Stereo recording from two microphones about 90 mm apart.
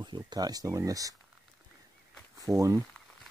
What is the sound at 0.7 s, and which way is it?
Speech, 35° right (ahead or behind).